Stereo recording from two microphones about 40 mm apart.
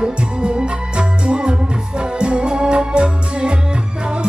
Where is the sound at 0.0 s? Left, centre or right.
Right.